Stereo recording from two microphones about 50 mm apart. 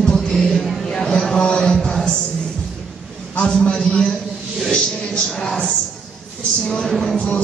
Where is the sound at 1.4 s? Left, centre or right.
Centre.